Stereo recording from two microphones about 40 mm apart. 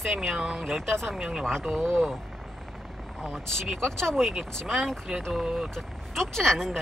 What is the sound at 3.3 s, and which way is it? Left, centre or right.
Speech, centre.